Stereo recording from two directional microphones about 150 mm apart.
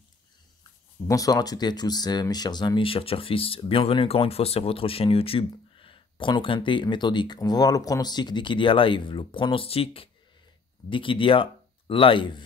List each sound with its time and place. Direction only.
1.0 s speech: 25° left (ahead or behind)